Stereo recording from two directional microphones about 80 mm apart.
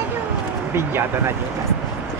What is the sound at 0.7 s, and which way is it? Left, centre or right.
Speech, right.